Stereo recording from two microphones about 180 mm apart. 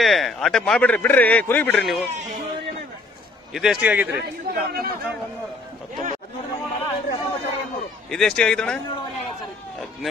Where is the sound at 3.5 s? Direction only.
Centre (ahead or behind).